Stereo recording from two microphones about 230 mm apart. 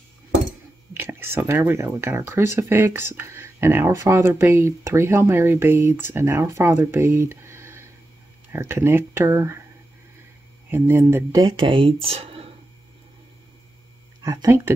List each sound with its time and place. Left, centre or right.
0.9 s speech: centre
10.7 s speech: centre
14.2 s speech: centre